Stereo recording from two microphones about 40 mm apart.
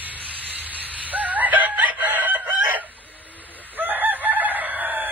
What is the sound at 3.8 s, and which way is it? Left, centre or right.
Chicken, right.